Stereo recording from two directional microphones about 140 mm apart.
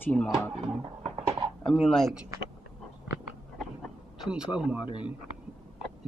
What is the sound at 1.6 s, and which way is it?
Speech, 5° left (ahead or behind).